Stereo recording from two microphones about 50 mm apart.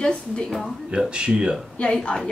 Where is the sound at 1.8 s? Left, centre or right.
Left.